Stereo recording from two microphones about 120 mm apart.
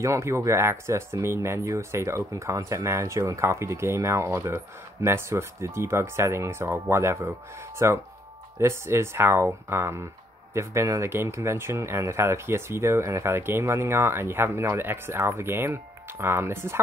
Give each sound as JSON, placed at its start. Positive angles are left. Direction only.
{"t": 0.0, "sound": "speech", "side_deg": -25}